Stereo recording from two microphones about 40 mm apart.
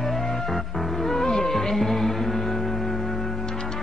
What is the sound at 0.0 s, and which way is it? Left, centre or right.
Music, centre.